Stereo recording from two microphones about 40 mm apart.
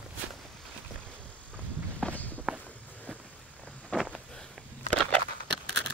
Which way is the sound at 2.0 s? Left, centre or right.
Left.